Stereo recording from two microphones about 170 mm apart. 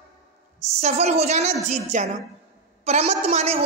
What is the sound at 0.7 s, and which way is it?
A woman's voice, 40° right (ahead or behind).